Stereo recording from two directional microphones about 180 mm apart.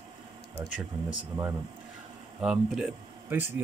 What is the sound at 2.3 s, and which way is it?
Speech, 5° right (ahead or behind).